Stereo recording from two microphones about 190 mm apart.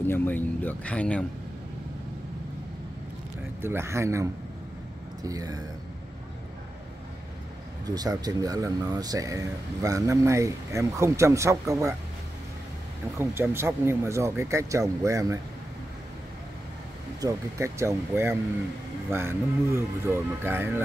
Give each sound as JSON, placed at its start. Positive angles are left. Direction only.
{"t": 0.0, "sound": "speech", "side_deg": 10}
{"t": 3.6, "sound": "speech", "side_deg": -15}
{"t": 7.8, "sound": "speech", "side_deg": -20}
{"t": 13.2, "sound": "speech", "side_deg": -15}
{"t": 17.2, "sound": "speech", "side_deg": -15}